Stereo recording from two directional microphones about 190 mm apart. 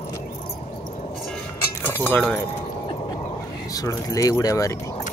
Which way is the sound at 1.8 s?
10° left (ahead or behind).